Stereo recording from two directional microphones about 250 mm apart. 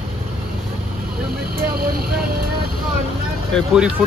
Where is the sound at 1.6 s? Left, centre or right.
Right.